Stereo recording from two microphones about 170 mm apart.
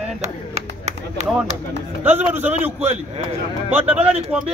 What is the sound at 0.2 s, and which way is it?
Speech, 40° right (ahead or behind).